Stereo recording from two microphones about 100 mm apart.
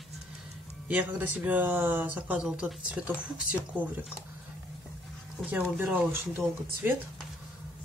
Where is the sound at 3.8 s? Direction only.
15° right (ahead or behind).